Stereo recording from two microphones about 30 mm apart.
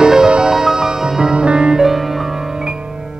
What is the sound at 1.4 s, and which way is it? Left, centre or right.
Music, right.